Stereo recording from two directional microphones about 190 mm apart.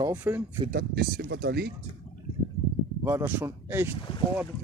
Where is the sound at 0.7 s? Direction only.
55° right (ahead or behind).